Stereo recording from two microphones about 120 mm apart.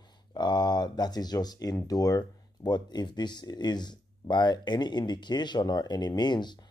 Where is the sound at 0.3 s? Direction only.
40° left (ahead or behind).